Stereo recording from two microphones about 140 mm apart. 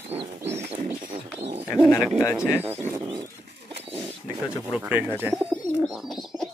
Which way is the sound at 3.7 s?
45° right (ahead or behind).